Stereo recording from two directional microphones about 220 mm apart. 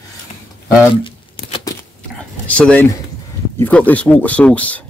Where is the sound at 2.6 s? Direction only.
5° left (ahead or behind).